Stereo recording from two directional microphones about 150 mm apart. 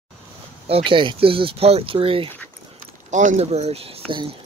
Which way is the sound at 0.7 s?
35° right (ahead or behind).